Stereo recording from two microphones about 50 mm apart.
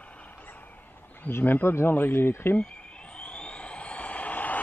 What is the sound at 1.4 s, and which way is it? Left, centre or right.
Speech, left.